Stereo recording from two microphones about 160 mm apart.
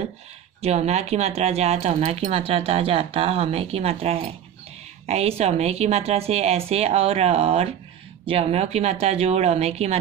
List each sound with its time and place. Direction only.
0.6 s speech: 45° right (ahead or behind)